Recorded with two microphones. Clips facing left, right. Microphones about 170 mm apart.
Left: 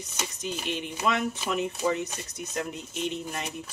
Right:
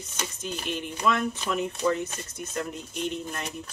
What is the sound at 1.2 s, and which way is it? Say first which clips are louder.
Speech: even; 15° left (ahead or behind).